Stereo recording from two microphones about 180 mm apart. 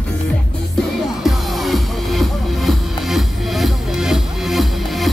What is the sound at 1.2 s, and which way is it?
Music, centre (ahead or behind).